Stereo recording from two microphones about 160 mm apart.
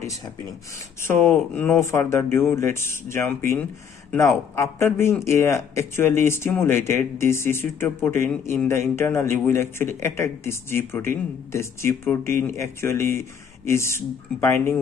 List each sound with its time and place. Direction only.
0.0 s speech: 20° left (ahead or behind)